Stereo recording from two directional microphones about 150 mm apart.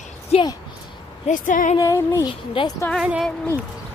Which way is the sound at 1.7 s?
20° left (ahead or behind).